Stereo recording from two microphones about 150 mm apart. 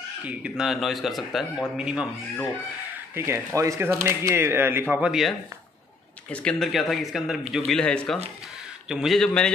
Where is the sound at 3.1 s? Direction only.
15° right (ahead or behind).